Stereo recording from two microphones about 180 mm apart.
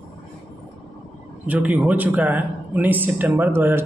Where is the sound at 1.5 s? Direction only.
10° right (ahead or behind).